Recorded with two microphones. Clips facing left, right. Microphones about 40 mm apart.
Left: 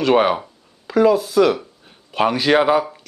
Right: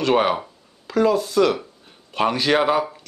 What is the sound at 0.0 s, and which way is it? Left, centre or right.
Speech, centre.